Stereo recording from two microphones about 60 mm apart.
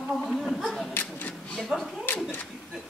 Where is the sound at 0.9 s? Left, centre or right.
Left.